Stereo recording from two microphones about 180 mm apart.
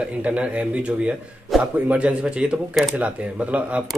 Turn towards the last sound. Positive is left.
turn(degrees=-5)  # may be behind; listen again after turning